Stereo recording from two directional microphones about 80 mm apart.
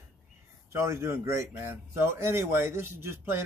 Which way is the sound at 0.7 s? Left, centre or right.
Right.